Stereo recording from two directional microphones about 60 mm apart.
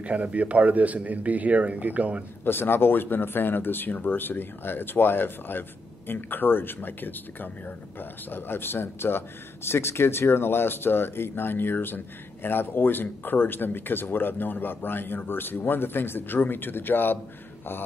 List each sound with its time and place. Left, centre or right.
0.0 s a man's voice: right
2.4 s speech: left